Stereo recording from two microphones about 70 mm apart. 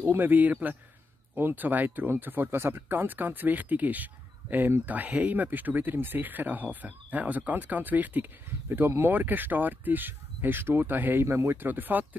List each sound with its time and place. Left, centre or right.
0.0 s speech: right